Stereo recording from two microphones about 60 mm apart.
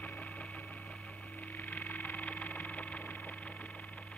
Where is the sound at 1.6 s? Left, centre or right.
Left.